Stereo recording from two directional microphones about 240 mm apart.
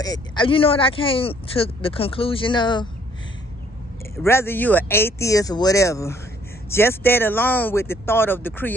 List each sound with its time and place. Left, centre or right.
0.0 s speech: centre
4.2 s speech: centre